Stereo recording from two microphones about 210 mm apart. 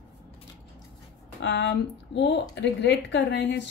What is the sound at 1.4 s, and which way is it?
A woman's voice, 60° left (ahead or behind).